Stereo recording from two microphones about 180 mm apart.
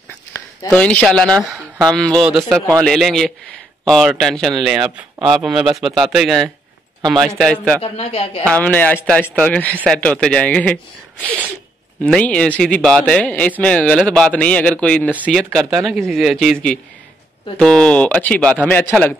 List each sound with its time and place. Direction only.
0.7 s speech: 5° left (ahead or behind)
7.8 s speech: 35° left (ahead or behind)
8.5 s speech: 5° left (ahead or behind)
12.0 s speech: 5° left (ahead or behind)
17.6 s speech: 5° left (ahead or behind)